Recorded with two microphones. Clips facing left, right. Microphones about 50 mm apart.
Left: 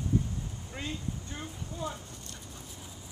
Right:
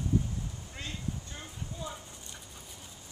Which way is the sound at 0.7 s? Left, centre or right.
Centre.